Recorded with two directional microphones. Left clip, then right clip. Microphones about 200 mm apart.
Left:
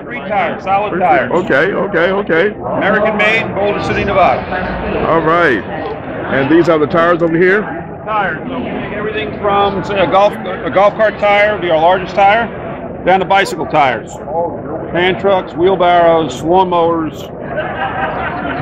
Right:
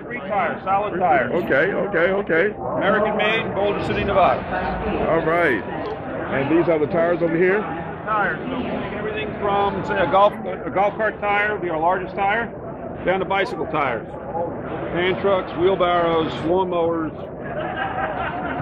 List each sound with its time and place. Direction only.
0.3 s a man's voice: centre (ahead or behind)
1.3 s speech: 20° left (ahead or behind)
2.8 s a man's voice: 5° left (ahead or behind)
5.1 s speech: 20° left (ahead or behind)
6.6 s speech: 30° left (ahead or behind)
9.1 s speech: 20° left (ahead or behind)
10.7 s speech: 40° left (ahead or behind); by 13.9 s 60° left (ahead or behind)
15.0 s speech: 60° left (ahead or behind)